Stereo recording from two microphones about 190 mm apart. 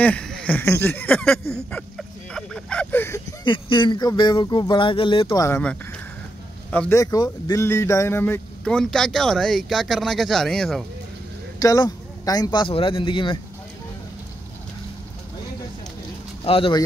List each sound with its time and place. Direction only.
0.0 s a man's voice: 5° left (ahead or behind)
3.4 s a man's voice: 25° left (ahead or behind); by 10.9 s 5° left (ahead or behind)
11.6 s speech: 20° left (ahead or behind)
16.4 s speech: 30° left (ahead or behind)